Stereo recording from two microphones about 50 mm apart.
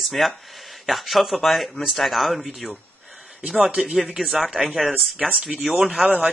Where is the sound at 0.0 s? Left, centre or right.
Centre.